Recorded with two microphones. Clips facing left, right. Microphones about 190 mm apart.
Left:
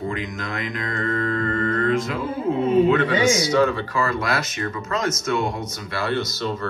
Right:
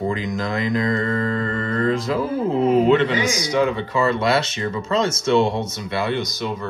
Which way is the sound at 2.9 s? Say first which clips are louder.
Right 1 dB; 25° right (ahead or behind).